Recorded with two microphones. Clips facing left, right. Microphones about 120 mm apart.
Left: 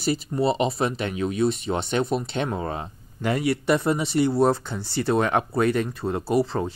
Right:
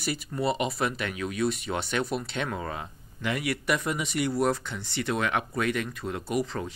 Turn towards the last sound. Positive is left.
turn(degrees=30)  # may be behind; listen again after turning